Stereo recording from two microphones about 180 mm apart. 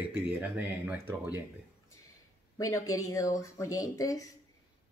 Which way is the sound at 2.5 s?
20° left (ahead or behind).